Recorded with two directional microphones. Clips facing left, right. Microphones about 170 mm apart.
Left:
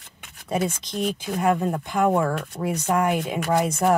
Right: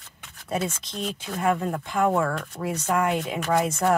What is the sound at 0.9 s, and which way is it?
Speech, 15° left (ahead or behind).